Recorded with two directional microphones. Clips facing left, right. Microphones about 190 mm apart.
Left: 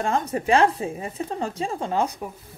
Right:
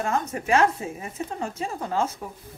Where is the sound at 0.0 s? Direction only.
30° left (ahead or behind).